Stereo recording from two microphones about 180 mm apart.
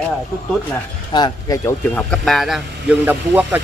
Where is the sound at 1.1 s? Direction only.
20° left (ahead or behind).